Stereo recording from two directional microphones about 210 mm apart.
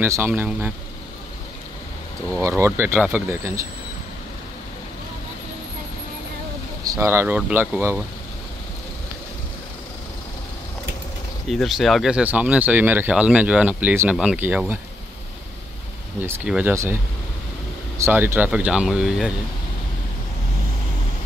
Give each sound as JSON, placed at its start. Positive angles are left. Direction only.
{"t": 0.0, "sound": "speech", "side_deg": -10}
{"t": 2.4, "sound": "speech", "side_deg": -15}
{"t": 6.8, "sound": "speech", "side_deg": -15}
{"t": 11.4, "sound": "speech", "side_deg": 0}
{"t": 16.2, "sound": "speech", "side_deg": -5}